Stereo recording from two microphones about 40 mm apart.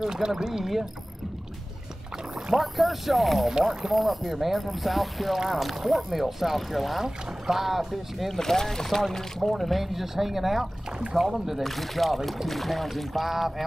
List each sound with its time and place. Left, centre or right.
0.0 s speech: centre
2.5 s speech: centre
8.3 s speech: centre